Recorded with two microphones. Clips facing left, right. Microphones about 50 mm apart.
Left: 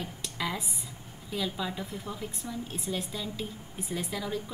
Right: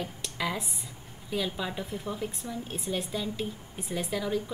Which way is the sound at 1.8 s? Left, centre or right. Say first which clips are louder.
Right 3 dB; centre.